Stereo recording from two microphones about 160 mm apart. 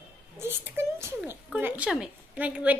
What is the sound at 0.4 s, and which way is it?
A child's voice, 15° right (ahead or behind).